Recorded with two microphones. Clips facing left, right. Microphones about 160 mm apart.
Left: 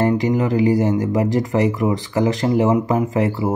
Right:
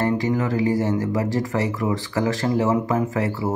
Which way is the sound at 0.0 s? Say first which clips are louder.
Left 4 dB; 20° left (ahead or behind).